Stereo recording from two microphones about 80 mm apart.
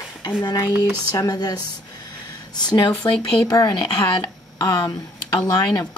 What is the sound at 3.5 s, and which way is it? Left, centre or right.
Speech, left.